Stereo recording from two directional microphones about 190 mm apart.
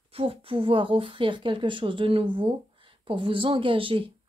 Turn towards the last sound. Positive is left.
turn(degrees=-30)  # may be behind; listen again after turning